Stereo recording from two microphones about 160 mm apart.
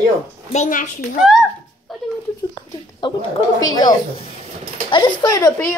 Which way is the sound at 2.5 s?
25° left (ahead or behind).